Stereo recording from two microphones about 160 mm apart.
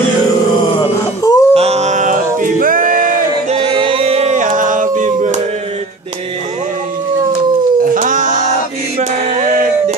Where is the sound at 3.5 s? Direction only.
35° right (ahead or behind); by 5.3 s 50° right (ahead or behind).